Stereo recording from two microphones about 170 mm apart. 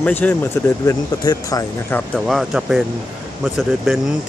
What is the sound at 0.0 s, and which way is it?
Speech, 10° left (ahead or behind).